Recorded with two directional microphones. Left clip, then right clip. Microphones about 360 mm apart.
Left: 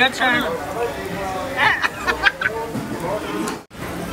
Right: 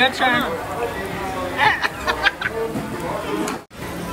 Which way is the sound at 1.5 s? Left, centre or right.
Centre.